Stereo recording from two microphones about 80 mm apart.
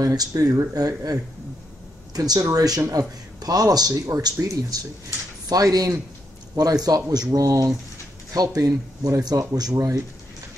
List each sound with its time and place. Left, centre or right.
0.0 s speech: right